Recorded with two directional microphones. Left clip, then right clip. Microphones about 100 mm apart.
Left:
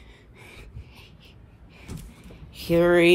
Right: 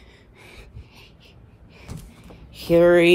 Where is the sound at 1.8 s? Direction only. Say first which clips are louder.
Right 1 dB; 55° right (ahead or behind).